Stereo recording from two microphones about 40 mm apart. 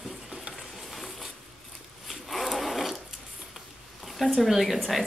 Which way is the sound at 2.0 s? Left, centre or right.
Centre.